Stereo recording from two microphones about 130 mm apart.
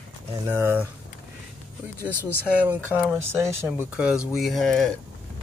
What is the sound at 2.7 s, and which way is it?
Speech, 20° right (ahead or behind).